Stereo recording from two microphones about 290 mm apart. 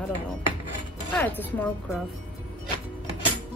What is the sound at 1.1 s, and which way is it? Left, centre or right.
Speech, centre.